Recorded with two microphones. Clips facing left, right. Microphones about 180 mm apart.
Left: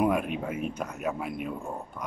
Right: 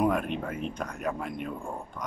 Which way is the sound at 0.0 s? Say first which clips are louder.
Left 1 dB; 10° left (ahead or behind).